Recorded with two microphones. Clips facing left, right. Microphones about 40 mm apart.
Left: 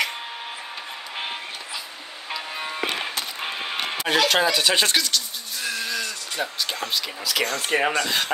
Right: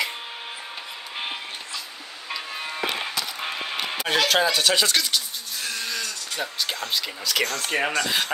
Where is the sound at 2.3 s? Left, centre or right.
Centre.